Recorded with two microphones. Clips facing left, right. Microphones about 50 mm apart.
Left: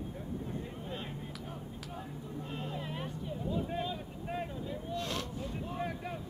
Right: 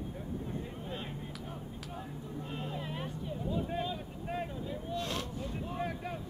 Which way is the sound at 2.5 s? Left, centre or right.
Centre.